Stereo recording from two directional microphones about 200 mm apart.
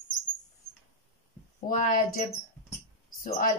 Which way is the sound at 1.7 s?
40° left (ahead or behind).